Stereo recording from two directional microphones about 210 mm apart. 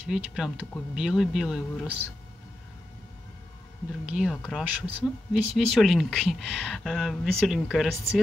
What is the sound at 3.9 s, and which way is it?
Speech, 5° right (ahead or behind).